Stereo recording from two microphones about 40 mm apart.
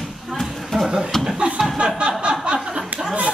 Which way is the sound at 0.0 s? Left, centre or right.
Centre.